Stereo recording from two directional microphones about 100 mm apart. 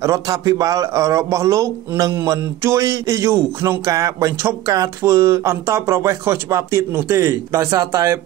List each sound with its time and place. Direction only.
0.0 s a man's voice: 35° right (ahead or behind)